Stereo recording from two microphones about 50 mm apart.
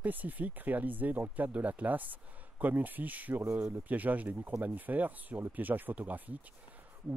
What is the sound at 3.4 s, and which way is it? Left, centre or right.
Speech, right.